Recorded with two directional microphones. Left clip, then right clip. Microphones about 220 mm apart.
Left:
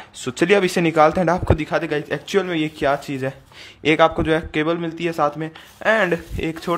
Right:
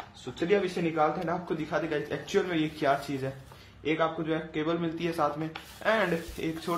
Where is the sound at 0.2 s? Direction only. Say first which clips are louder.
Left 11 dB; 50° left (ahead or behind).